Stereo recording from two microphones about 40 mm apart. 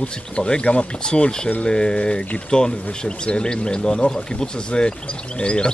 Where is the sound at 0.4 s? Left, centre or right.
Left.